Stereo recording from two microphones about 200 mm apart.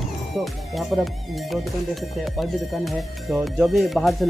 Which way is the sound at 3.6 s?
Centre (ahead or behind).